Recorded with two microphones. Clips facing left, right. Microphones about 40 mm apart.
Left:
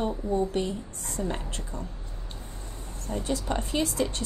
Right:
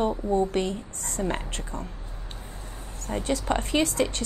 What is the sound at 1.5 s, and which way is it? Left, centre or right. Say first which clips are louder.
Speech: right 2 dB; right.